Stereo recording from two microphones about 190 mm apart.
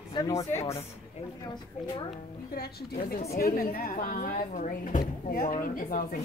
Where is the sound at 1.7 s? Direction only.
35° left (ahead or behind).